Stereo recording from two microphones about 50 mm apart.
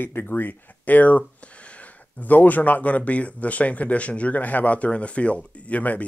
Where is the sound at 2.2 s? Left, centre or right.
Left.